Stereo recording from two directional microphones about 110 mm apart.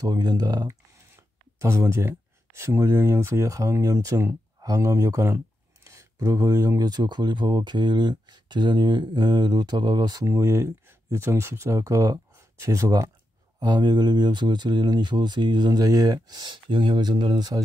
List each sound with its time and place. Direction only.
0.0 s speech: 35° right (ahead or behind)
10.3 s speech: 25° right (ahead or behind)
13.6 s speech: 40° right (ahead or behind)